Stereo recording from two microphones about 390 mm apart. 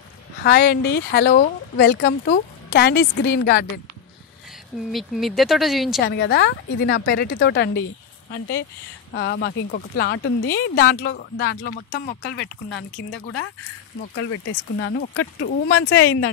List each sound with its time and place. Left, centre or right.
0.4 s speech: left
4.9 s speech: centre
6.0 s speech: left
13.9 s speech: left